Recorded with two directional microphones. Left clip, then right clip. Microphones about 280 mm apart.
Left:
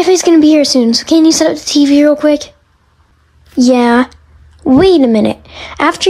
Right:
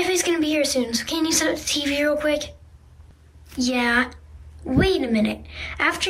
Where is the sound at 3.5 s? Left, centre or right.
Centre.